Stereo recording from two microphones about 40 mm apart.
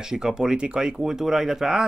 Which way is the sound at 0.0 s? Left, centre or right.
Centre.